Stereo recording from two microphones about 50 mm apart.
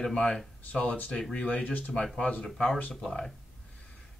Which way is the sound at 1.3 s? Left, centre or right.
Left.